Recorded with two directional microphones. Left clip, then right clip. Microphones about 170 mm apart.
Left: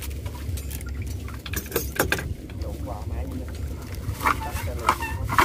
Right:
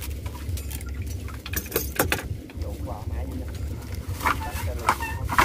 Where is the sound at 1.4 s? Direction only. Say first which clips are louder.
Even; 65° right (ahead or behind).